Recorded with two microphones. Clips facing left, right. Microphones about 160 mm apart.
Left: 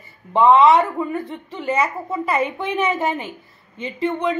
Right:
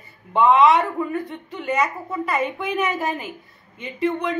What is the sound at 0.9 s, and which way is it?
Speech, 25° left (ahead or behind).